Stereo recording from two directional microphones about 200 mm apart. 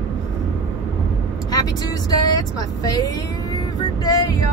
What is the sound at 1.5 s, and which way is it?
Speech, 20° left (ahead or behind).